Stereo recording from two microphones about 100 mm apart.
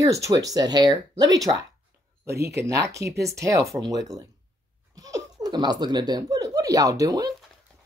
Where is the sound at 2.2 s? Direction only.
30° right (ahead or behind).